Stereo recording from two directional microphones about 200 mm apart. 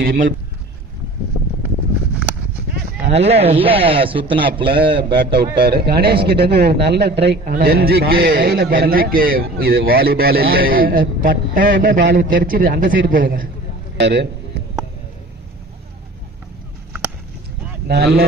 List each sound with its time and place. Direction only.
0.0 s speech: 45° right (ahead or behind)
3.1 s a man's voice: 30° right (ahead or behind)
5.3 s a man's voice: 55° right (ahead or behind)
7.4 s a man's voice: 45° right (ahead or behind)
13.9 s a sound: 55° right (ahead or behind)
17.8 s a man's voice: 50° right (ahead or behind)